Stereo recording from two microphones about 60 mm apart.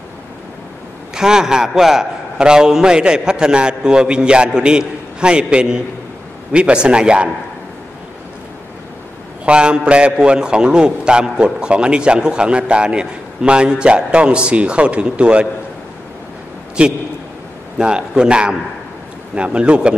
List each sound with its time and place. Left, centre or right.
1.1 s a man's voice: centre
9.5 s a man's voice: centre
16.8 s a sound: centre
17.7 s a man's voice: centre